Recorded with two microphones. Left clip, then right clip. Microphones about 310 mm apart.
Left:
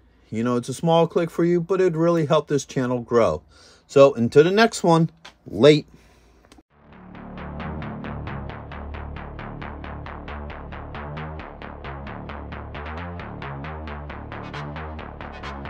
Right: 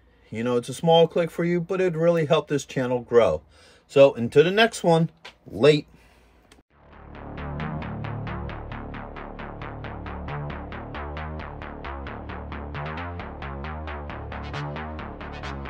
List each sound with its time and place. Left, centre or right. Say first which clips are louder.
0.3 s speech: even; centre